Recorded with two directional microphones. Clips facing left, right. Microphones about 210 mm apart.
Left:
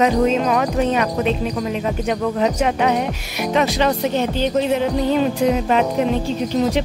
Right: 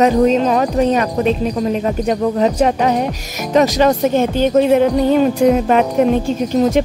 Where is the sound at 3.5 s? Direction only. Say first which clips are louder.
Right 6 dB; 45° right (ahead or behind).